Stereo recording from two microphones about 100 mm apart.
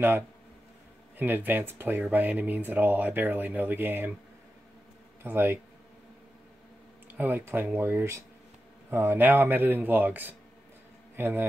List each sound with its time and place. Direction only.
1.1 s speech: 20° right (ahead or behind)
5.2 s speech: 20° right (ahead or behind)
7.1 s a man's voice: 20° right (ahead or behind)